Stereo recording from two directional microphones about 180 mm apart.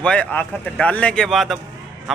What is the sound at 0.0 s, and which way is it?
Speech, 5° left (ahead or behind).